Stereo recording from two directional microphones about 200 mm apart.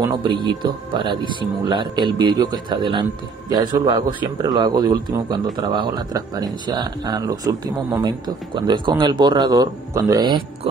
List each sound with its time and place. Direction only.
0.0 s speech: 20° right (ahead or behind)